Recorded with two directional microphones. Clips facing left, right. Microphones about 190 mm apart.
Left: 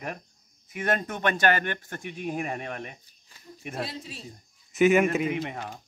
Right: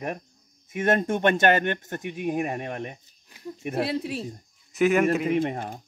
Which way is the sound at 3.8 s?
65° right (ahead or behind).